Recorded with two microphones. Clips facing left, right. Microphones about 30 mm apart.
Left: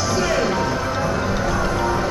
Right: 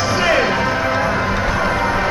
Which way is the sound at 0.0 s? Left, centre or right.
Right.